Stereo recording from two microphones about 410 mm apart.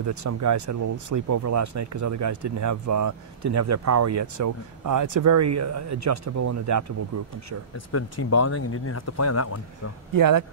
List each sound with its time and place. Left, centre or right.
0.0 s speech: right
7.7 s speech: left
10.1 s speech: right